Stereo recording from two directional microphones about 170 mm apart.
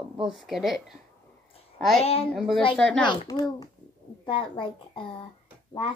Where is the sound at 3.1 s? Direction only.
25° left (ahead or behind).